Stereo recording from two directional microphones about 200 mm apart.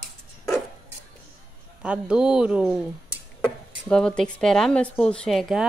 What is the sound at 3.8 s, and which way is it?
Speech, 5° left (ahead or behind).